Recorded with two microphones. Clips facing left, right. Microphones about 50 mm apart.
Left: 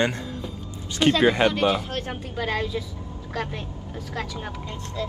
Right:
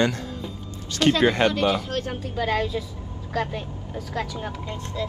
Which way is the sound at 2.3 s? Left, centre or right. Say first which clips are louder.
Right 2 dB; centre.